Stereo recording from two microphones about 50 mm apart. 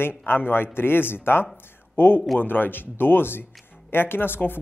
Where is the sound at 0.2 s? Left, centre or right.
Left.